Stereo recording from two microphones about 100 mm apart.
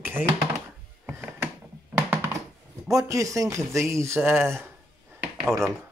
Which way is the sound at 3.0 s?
35° right (ahead or behind).